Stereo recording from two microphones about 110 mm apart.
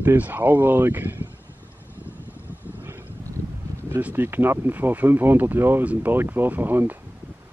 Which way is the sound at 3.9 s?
20° right (ahead or behind).